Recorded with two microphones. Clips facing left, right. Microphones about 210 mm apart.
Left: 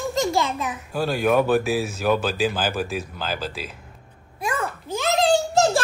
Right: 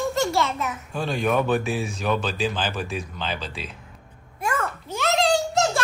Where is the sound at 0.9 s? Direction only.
5° left (ahead or behind).